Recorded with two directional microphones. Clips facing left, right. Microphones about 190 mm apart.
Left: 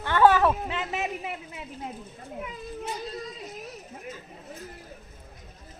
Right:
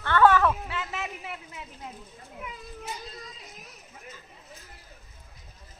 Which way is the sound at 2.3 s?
30° left (ahead or behind).